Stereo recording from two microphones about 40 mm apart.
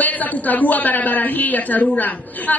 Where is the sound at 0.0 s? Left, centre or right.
Left.